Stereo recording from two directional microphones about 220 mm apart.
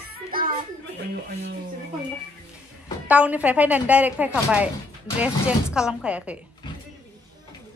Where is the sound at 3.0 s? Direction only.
5° right (ahead or behind).